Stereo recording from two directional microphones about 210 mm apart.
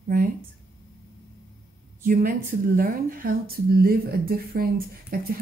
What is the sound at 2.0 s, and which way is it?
Speech, 40° right (ahead or behind).